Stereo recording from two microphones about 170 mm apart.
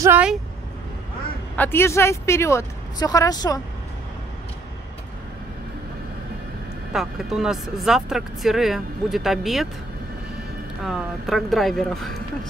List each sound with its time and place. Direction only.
0.0 s speech: 10° right (ahead or behind)
1.6 s speech: 15° left (ahead or behind)
6.9 s speech: centre (ahead or behind)
10.8 s speech: centre (ahead or behind)